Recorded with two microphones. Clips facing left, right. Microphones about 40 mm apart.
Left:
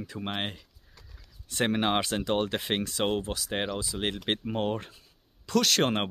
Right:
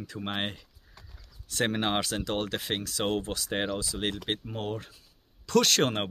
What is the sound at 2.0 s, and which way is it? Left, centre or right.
Speech, left.